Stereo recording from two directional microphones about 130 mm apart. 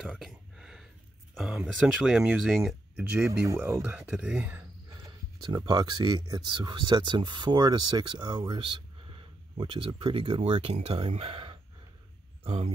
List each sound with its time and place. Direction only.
0.0 s a sound: centre (ahead or behind)
1.3 s speech: 5° right (ahead or behind)
3.3 s speech: 20° right (ahead or behind)
5.4 s speech: 30° right (ahead or behind); by 12.7 s 50° right (ahead or behind)